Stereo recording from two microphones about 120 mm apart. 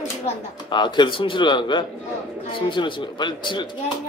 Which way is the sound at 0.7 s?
40° left (ahead or behind).